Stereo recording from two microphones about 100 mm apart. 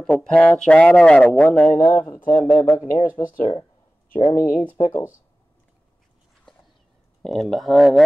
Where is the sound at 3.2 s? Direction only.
80° left.